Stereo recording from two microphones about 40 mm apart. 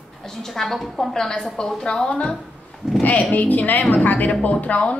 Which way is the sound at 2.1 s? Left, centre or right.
Left.